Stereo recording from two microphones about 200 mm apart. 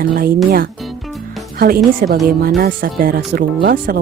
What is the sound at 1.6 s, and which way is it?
Speech, 50° right (ahead or behind).